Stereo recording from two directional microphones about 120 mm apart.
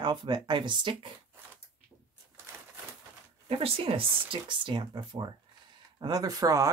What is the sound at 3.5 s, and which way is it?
Speech, 50° right (ahead or behind).